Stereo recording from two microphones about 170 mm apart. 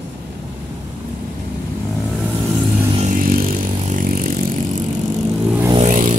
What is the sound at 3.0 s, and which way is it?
Vehicle, 55° right (ahead or behind).